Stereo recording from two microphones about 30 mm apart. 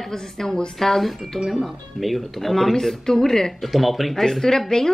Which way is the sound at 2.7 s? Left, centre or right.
Centre.